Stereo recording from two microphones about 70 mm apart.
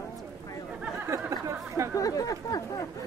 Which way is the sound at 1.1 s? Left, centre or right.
Right.